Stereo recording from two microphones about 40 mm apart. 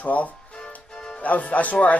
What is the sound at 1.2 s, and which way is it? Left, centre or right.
Speech, left.